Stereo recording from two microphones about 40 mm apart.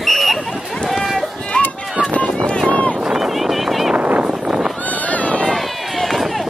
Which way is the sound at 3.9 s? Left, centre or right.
Right.